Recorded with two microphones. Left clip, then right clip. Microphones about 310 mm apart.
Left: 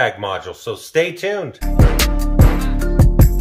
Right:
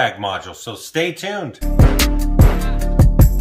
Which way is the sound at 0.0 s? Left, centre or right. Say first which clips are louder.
Even; centre.